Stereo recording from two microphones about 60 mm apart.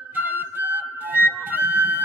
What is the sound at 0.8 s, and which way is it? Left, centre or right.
Flute, right.